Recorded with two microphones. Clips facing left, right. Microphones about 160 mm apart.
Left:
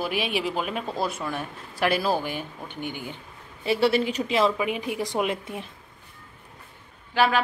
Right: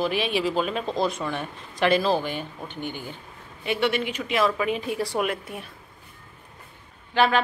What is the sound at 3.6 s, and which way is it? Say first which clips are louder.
Speech: left 3 dB; 35° left (ahead or behind).